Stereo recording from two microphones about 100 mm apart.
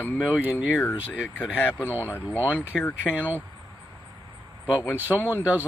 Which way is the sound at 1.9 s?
20° right (ahead or behind).